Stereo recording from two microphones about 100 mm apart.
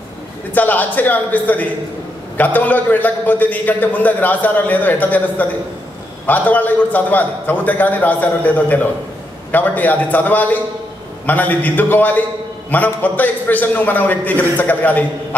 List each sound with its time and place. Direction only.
0.6 s a man's voice: 15° left (ahead or behind)